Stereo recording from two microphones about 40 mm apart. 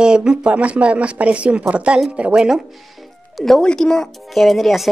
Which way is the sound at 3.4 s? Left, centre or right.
Centre.